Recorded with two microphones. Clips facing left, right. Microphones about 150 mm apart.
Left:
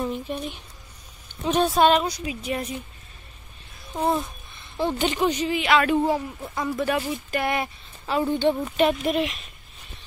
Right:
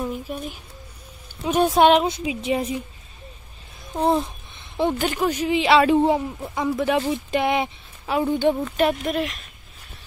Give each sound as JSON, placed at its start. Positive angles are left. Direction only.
{"t": 0.0, "sound": "speech", "side_deg": -5}
{"t": 4.0, "sound": "speech", "side_deg": -25}
{"t": 4.9, "sound": "speech", "side_deg": -5}
{"t": 5.5, "sound": "speech", "side_deg": -25}
{"t": 6.5, "sound": "speech", "side_deg": -5}
{"t": 7.0, "sound": "speech", "side_deg": -25}
{"t": 8.1, "sound": "speech", "side_deg": -10}